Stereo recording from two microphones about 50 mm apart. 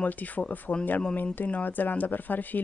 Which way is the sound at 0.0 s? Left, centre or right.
Left.